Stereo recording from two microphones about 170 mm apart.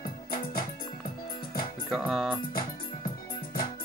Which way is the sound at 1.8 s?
Centre (ahead or behind).